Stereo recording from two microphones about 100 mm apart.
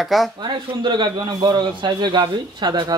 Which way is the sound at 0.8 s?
50° right (ahead or behind).